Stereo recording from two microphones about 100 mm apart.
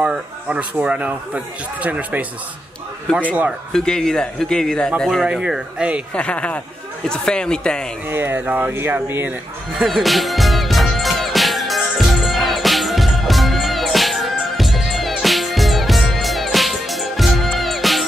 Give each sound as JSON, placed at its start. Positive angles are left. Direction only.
{"t": 0.0, "sound": "a man's voice", "side_deg": -15}
{"t": 3.1, "sound": "speech", "side_deg": 5}
{"t": 6.1, "sound": "speech", "side_deg": 10}
{"t": 8.1, "sound": "speech", "side_deg": -25}
{"t": 9.8, "sound": "music", "side_deg": 0}